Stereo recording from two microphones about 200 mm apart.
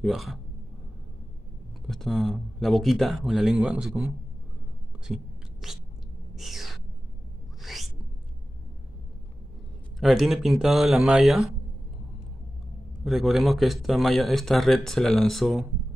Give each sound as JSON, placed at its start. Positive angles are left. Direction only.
{"t": 0.0, "sound": "speech", "side_deg": 0}
{"t": 1.9, "sound": "speech", "side_deg": 0}
{"t": 5.0, "sound": "whispering", "side_deg": -5}
{"t": 6.3, "sound": "owl", "side_deg": 0}
{"t": 7.6, "sound": "a sound", "side_deg": 0}
{"t": 9.9, "sound": "speech", "side_deg": 0}
{"t": 13.0, "sound": "speech", "side_deg": 0}